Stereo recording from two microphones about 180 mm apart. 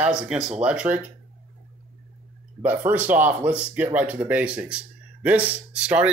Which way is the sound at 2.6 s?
10° right (ahead or behind).